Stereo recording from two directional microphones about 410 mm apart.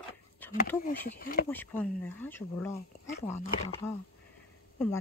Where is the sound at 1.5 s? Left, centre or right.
Centre.